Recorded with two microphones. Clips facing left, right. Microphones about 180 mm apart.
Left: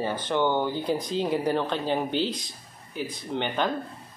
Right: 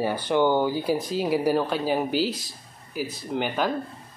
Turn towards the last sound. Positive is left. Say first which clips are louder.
# right 1 dB
turn(degrees=-5)  # may be behind; listen again after turning